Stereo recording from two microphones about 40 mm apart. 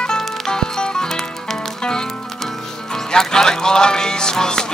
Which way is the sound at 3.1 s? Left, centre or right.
Centre.